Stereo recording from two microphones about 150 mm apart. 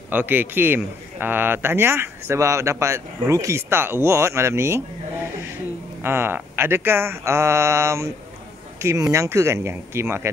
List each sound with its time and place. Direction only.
0.1 s speech: 15° right (ahead or behind)
6.0 s speech: 15° right (ahead or behind)